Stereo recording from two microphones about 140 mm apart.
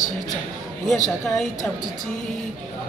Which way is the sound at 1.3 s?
5° left (ahead or behind).